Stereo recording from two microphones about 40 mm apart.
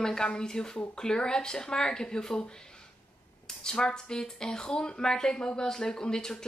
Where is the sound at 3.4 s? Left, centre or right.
Centre.